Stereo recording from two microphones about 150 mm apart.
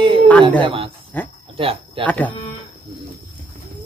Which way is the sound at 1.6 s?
40° right (ahead or behind).